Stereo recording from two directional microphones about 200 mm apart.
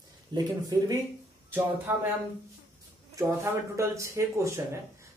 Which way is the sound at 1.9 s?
10° right (ahead or behind).